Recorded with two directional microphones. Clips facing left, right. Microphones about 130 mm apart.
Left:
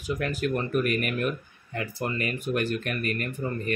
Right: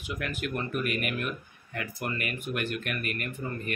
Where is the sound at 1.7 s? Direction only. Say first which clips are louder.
Left 4 dB; 30° left (ahead or behind).